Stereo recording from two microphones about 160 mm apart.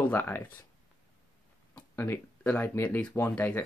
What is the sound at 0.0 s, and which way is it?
Speech, 10° left (ahead or behind).